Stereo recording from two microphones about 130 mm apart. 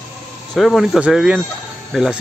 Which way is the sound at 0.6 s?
Centre (ahead or behind).